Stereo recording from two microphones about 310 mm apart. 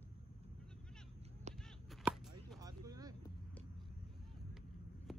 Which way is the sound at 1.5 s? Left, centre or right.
Right.